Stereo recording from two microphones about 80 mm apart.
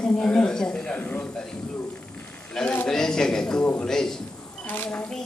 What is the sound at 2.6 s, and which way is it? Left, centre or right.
Speech, centre.